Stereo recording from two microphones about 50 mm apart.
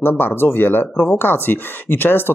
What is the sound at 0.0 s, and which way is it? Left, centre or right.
Speech, left.